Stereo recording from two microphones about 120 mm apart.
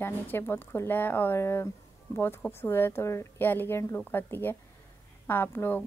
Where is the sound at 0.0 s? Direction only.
20° left (ahead or behind).